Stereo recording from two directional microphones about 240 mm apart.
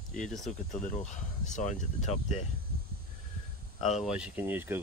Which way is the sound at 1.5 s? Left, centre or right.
Left.